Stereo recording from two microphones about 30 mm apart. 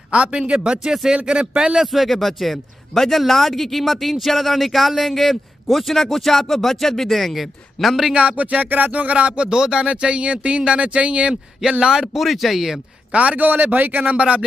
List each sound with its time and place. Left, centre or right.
0.1 s a man's voice: right
1.9 s a man's voice: centre
8.1 s speech: right
8.4 s speech: right
8.6 s music: right
8.9 s speech: right
9.5 s speech: right
9.8 s speech: right
11.8 s speech: right
12.2 s speech: centre
13.1 s speech: right
13.7 s speech: right
14.0 s speech: right